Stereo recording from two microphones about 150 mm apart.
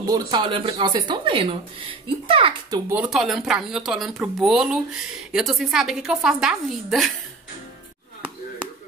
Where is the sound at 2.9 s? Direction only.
5° right (ahead or behind).